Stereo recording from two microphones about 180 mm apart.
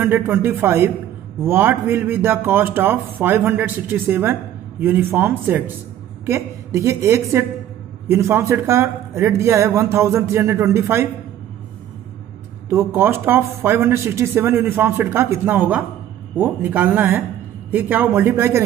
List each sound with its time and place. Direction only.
0.0 s a man's voice: 10° right (ahead or behind)
12.6 s a man's voice: 15° right (ahead or behind)